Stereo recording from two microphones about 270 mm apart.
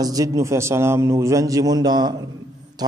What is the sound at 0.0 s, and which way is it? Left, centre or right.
A man's voice, centre.